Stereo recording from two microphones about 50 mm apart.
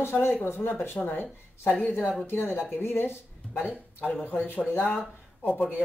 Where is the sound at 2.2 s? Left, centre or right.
Left.